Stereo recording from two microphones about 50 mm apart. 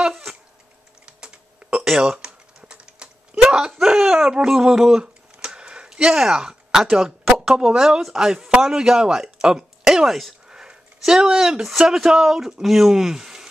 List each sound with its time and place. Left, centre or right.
0.1 s typing: centre
1.0 s typing: centre
5.0 s a sound: centre
7.3 s speech: centre
10.5 s a sound: centre
11.9 s speech: centre